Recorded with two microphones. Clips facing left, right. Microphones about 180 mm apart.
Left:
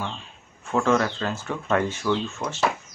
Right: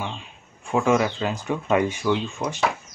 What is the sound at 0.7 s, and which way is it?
Speech, 10° right (ahead or behind).